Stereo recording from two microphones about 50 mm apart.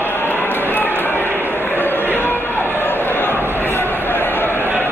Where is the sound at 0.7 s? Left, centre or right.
Left.